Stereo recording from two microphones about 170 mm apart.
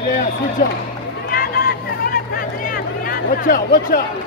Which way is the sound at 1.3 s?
60° left (ahead or behind).